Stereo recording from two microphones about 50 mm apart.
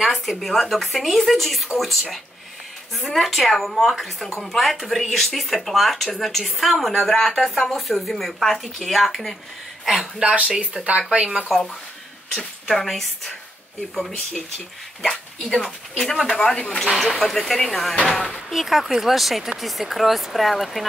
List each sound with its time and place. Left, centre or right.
0.0 s speech: centre
9.8 s speech: centre
10.2 s speech: centre
11.2 s speech: centre
12.4 s speech: centre
15.0 s speech: centre
18.5 s speech: centre